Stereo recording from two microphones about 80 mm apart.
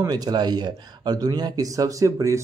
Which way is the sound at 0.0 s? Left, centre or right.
Right.